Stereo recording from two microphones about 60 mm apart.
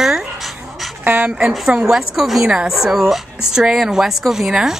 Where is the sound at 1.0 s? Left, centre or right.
Right.